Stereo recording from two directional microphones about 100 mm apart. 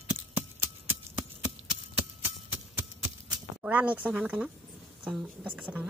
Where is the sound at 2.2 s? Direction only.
20° right (ahead or behind).